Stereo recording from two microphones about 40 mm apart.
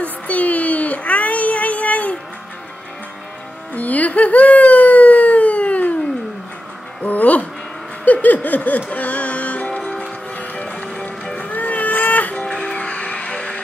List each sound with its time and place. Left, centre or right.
0.0 s child singing: left
3.7 s a sound: left
7.0 s music: left
8.0 s a sound: left
8.9 s music: left
11.3 s music: left
12.4 s music: left